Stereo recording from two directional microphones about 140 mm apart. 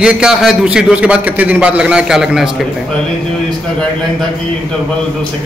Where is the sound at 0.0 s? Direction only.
5° right (ahead or behind).